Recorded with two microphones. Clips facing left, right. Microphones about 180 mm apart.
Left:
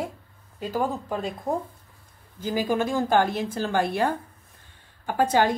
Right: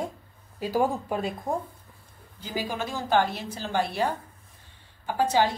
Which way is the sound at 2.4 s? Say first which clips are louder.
Left 7 dB; 50° left (ahead or behind).